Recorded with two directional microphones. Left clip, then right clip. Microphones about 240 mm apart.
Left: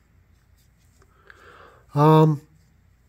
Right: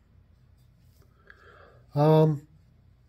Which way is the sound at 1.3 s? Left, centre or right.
Left.